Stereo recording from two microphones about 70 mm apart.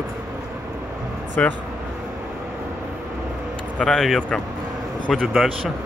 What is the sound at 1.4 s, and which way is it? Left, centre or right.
Speech, centre.